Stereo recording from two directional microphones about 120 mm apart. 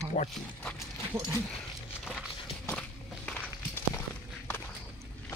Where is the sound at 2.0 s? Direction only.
5° right (ahead or behind).